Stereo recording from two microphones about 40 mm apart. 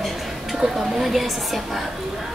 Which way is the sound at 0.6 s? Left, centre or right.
Centre.